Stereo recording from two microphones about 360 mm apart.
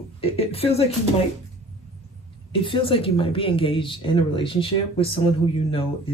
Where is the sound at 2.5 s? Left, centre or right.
Centre.